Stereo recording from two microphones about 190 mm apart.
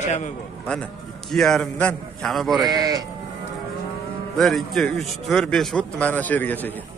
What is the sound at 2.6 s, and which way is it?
Speech, 20° right (ahead or behind).